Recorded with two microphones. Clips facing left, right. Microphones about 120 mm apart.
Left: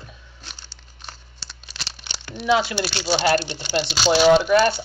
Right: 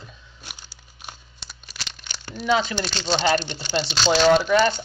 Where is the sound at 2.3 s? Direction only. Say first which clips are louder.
Left 2 dB; 10° left (ahead or behind).